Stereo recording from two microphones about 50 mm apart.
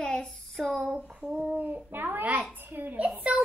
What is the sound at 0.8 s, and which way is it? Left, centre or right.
Child singing, right.